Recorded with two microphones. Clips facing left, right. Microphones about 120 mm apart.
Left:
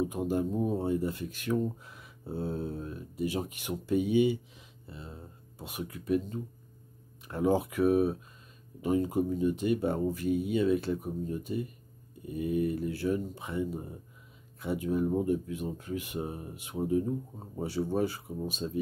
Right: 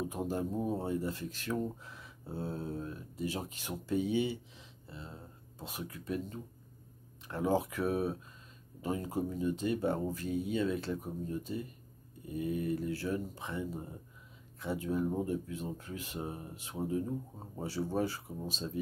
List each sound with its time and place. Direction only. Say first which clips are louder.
0.1 s speech: left 5 dB; 15° left (ahead or behind)